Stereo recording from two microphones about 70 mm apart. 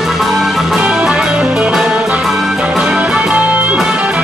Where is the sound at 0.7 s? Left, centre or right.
Centre.